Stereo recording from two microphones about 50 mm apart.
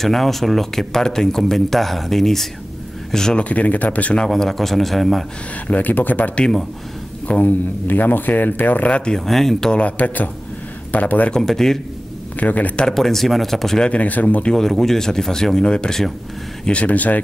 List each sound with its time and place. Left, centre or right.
0.0 s speech: centre
3.3 s speech: left
4.2 s speech: centre
5.7 s a man's voice: left
8.8 s speech: centre
9.2 s speech: centre
9.7 s a man's voice: left
11.3 s speech: centre
12.4 s a man's voice: left
12.7 s speech: centre
13.8 s a man's voice: left
14.4 s speech: centre
16.6 s a man's voice: left